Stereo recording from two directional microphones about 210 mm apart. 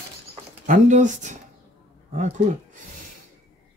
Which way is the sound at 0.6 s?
35° right (ahead or behind).